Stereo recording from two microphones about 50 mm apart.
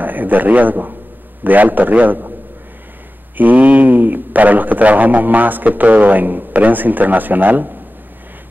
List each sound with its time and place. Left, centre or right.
0.0 s a man's voice: right
3.3 s a man's voice: right